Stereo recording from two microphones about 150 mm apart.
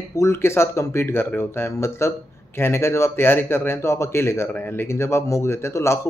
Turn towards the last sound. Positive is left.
turn(degrees=20)  # may be behind; listen again after turning